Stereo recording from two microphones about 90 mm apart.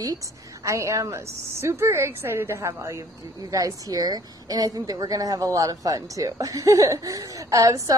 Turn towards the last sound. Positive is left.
turn(degrees=-40)  # may be behind; listen again after turning